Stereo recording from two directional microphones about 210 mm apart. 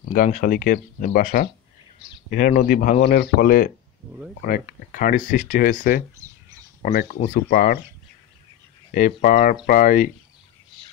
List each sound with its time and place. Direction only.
0.0 s speech: 40° left (ahead or behind)
8.9 s speech: 40° left (ahead or behind)